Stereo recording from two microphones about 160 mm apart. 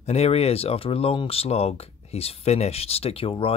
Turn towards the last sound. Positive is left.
turn(degrees=35)  # may be behind; listen again after turning